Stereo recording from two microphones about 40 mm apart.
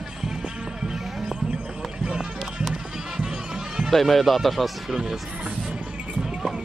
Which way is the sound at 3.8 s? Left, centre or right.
Centre.